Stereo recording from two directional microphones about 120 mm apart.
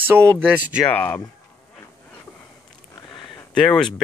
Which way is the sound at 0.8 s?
15° left (ahead or behind).